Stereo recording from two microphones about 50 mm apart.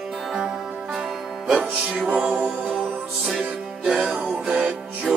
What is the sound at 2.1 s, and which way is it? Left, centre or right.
Music, right.